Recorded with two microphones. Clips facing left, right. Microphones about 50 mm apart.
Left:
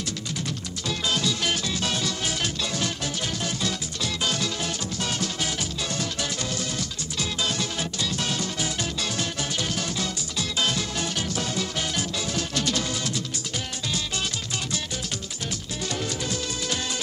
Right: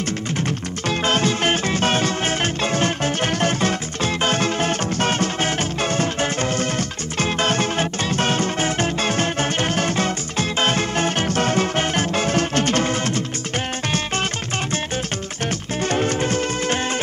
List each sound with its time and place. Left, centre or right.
0.5 s music: right
15.8 s music: right